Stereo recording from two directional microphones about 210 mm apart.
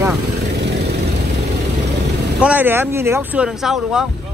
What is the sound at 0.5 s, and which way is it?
Vehicle, 55° right (ahead or behind).